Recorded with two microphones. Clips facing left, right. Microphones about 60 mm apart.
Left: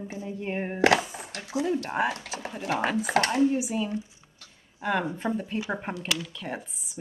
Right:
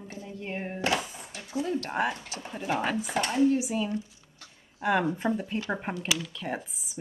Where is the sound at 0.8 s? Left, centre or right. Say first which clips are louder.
Left 8 dB; left.